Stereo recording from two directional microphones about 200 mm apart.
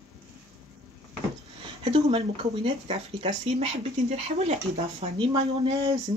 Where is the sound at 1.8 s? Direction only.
30° right (ahead or behind).